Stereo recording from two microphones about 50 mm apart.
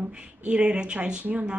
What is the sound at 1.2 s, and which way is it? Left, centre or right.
Speech, right.